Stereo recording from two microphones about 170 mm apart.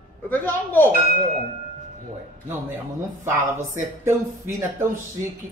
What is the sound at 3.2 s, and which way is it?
Speech, 15° right (ahead or behind).